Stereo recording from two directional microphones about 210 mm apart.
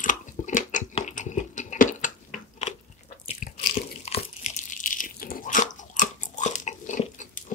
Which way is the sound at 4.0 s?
30° left (ahead or behind).